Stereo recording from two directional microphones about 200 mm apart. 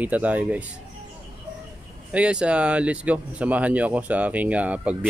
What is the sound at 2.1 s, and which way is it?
Speech, 5° right (ahead or behind).